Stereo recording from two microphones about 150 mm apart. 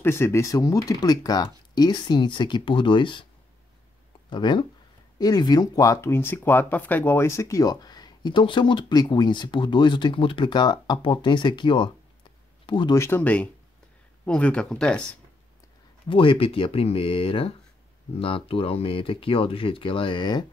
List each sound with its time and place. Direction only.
0.0 s speech: 15° left (ahead or behind); by 3.3 s 35° left (ahead or behind)
4.3 s speech: 30° left (ahead or behind)
12.9 s speech: 15° left (ahead or behind)
16.1 s speech: 35° left (ahead or behind)